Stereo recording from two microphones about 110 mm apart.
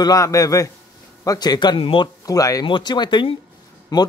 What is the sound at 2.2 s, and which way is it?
Speech, 30° left (ahead or behind).